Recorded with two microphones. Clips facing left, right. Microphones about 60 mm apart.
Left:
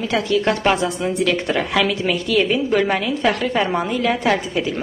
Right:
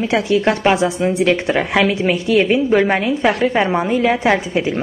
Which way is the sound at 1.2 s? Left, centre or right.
Right.